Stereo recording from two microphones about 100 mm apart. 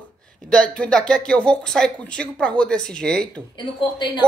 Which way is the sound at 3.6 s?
50° left (ahead or behind).